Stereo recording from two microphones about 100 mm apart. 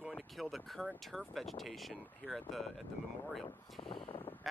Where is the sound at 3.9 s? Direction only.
60° left (ahead or behind).